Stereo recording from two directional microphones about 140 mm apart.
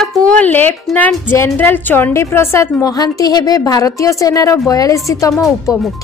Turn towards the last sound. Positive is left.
turn(degrees=25)  # may be behind; listen again after turning